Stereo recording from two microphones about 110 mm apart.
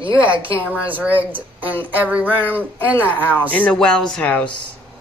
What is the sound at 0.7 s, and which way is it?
Speech, 15° right (ahead or behind).